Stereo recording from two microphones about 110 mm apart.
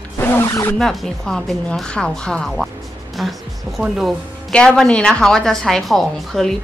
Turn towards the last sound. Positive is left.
turn(degrees=5)  # may be behind; listen again after turning